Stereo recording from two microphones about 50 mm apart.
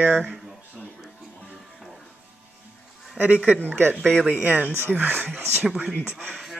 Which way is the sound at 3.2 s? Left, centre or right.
Right.